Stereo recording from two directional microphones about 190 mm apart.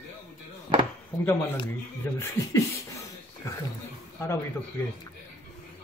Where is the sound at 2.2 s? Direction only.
15° left (ahead or behind).